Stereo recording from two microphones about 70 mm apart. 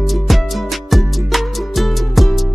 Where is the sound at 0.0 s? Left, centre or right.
Centre.